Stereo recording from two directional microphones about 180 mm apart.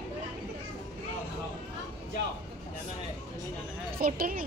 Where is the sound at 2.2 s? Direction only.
70° right (ahead or behind).